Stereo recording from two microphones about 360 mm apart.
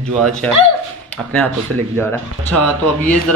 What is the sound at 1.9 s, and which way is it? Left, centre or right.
Speech, centre.